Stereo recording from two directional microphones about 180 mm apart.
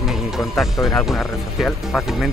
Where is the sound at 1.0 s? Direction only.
Centre (ahead or behind).